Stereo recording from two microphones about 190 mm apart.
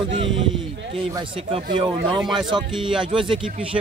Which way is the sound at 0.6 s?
25° right (ahead or behind).